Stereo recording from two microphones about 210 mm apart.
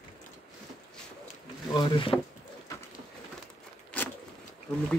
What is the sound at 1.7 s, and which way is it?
Speech, 25° left (ahead or behind).